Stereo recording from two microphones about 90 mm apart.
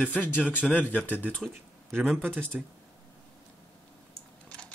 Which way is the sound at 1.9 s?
5° right (ahead or behind).